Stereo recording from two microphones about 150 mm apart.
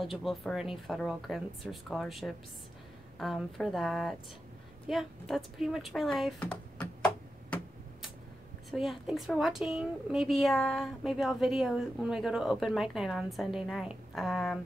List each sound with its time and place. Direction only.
0.0 s a woman's voice: centre (ahead or behind)
4.8 s a sound: centre (ahead or behind)
8.6 s a woman's voice: centre (ahead or behind)